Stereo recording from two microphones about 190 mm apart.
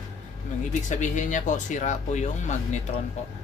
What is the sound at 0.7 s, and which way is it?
Speech, 40° left (ahead or behind).